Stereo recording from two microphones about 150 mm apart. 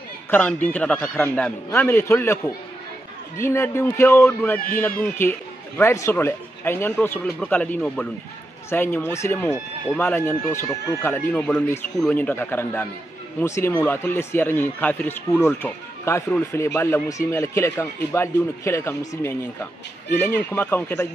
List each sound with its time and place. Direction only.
0.3 s speech: 10° left (ahead or behind)